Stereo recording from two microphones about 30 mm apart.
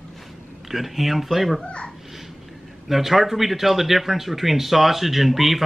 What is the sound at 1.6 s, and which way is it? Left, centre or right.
Speech, left.